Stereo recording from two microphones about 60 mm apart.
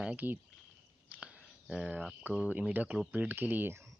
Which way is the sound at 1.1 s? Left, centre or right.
Right.